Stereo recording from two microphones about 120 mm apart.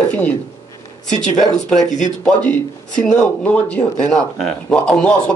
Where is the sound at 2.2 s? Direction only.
10° left (ahead or behind).